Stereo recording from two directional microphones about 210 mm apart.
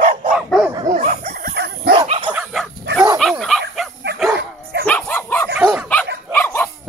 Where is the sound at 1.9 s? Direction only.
25° right (ahead or behind).